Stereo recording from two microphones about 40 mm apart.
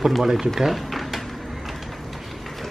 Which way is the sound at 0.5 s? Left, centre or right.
Centre.